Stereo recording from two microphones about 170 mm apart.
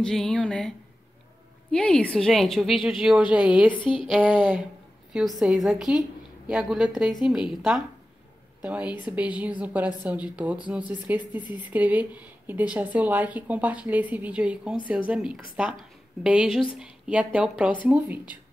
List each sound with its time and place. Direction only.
0.0 s a woman's voice: 5° left (ahead or behind)
3.8 s speech: 30° left (ahead or behind)
4.1 s a woman's voice: 5° right (ahead or behind)